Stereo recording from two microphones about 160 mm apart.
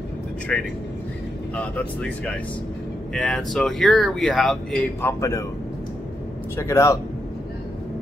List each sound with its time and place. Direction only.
0.5 s speech: 5° left (ahead or behind)
5.0 s a man's voice: 20° left (ahead or behind)
6.5 s speech: 15° left (ahead or behind)